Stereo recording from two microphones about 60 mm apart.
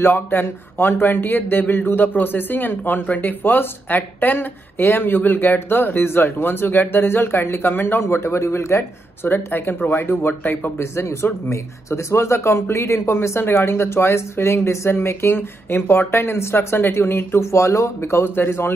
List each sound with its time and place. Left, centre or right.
0.0 s speech: left
8.0 s speech: left
9.3 s speech: left
10.8 s speech: left
17.5 s speech: left
18.2 s speech: left